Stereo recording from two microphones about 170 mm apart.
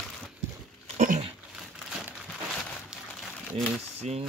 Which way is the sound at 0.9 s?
50° right (ahead or behind).